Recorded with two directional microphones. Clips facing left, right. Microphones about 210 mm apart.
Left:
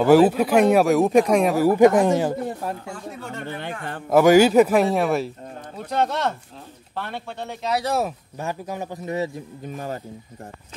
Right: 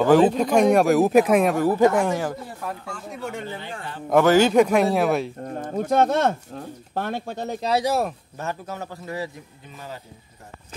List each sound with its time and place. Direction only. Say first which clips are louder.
0.0 s speech: left 2 dB; 10° left (ahead or behind)
1.7 s speech: left 7 dB; 15° left (ahead or behind)
4.1 s speech: left 2 dB; 10° left (ahead or behind)
5.6 s speech: right 4 dB; 45° right (ahead or behind)
7.8 s speech: right 1 dB; centre (ahead or behind)
8.4 s speech: left 2 dB; 15° left (ahead or behind)